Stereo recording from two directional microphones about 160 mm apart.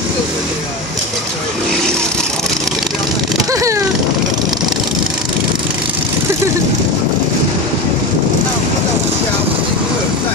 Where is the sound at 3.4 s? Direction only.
20° right (ahead or behind).